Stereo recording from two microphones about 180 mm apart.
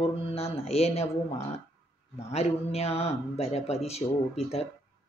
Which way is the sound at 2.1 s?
35° left (ahead or behind).